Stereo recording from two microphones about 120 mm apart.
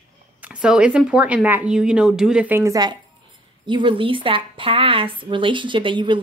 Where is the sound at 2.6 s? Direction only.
30° right (ahead or behind).